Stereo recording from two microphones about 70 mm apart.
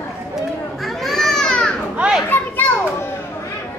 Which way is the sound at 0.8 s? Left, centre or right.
Centre.